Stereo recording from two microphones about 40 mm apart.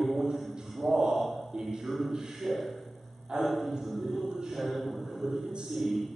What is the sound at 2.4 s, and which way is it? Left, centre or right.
A man's voice, centre.